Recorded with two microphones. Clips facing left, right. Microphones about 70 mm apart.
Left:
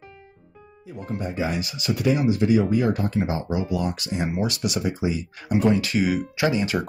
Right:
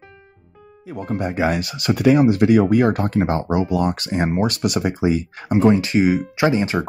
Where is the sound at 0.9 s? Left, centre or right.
Right.